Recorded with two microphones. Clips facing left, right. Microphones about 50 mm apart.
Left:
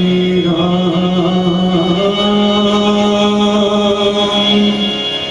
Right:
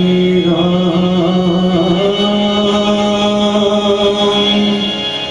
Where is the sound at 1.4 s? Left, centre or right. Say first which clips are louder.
Right 1 dB; centre.